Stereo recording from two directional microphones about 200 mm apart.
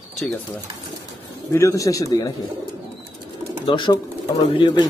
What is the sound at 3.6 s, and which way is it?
Speech, 25° left (ahead or behind).